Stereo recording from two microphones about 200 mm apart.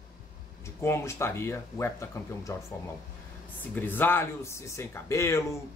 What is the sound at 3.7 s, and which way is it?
Speech, 10° left (ahead or behind).